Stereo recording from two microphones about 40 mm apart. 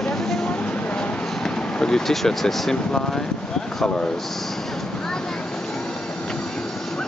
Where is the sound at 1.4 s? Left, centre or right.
Centre.